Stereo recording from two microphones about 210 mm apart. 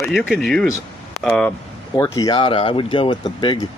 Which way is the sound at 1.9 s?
15° left (ahead or behind).